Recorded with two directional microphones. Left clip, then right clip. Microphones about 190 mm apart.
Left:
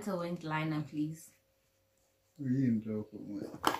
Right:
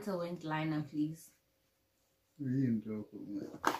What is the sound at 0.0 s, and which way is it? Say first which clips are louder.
Speech: left 1 dB; centre (ahead or behind).